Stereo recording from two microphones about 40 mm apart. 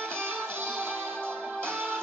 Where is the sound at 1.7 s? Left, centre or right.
Right.